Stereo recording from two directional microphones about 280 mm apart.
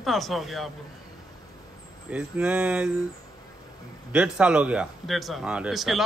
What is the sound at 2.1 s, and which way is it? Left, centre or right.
Speech, centre.